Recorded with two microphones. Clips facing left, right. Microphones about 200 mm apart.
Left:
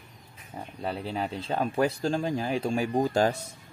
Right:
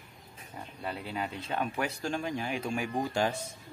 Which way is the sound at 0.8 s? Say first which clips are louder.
Left 5 dB; 30° left (ahead or behind).